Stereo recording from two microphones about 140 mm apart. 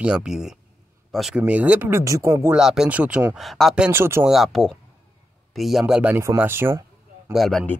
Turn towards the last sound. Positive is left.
turn(degrees=0)  # may be behind; listen again after turning